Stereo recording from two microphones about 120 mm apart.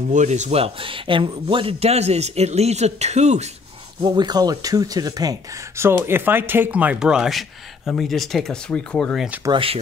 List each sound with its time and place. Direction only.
0.1 s speech: 85° right; by 3.4 s 70° right (ahead or behind)
4.0 s speech: 35° right (ahead or behind)
5.8 s speech: 20° right (ahead or behind); by 9.2 s 10° left (ahead or behind)
9.5 s speech: 50° right (ahead or behind)